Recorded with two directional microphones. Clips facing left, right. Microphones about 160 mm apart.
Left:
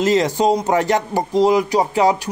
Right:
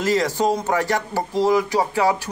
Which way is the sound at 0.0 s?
20° left (ahead or behind).